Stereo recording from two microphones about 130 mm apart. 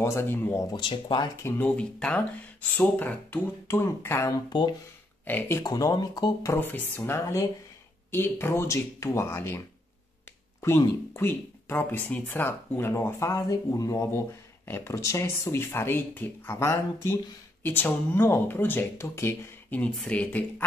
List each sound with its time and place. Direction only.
0.0 s speech: 20° left (ahead or behind)
0.7 s speech: 40° left (ahead or behind)
1.3 s speech: 20° left (ahead or behind)
1.8 s speech: 10° left (ahead or behind)
3.6 s speech: 20° left (ahead or behind)
5.6 s speech: 25° left (ahead or behind)
6.5 s speech: 15° left (ahead or behind)
11.1 s speech: 15° left (ahead or behind)